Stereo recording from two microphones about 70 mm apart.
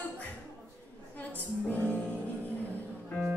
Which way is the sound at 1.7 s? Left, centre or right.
Left.